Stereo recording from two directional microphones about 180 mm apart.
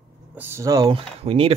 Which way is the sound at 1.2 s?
30° right (ahead or behind).